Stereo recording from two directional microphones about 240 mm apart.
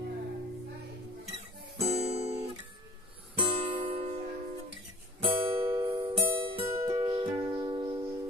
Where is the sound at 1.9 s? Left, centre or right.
Right.